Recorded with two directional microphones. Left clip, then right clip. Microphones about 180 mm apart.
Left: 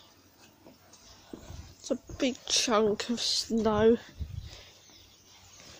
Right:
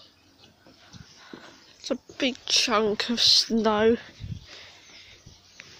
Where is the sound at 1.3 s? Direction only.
Centre (ahead or behind).